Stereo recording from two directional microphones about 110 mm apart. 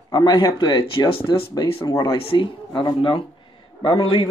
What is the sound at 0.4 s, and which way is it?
Speech, 40° left (ahead or behind).